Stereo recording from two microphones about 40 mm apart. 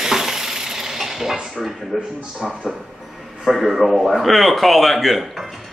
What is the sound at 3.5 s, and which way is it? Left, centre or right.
A man's voice, centre.